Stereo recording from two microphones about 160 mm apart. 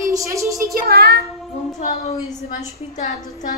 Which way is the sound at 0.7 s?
75° right (ahead or behind).